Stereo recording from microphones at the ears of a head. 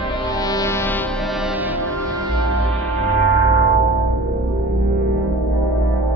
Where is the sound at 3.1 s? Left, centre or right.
Right.